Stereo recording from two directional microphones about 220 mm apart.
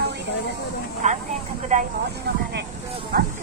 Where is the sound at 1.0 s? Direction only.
35° right (ahead or behind).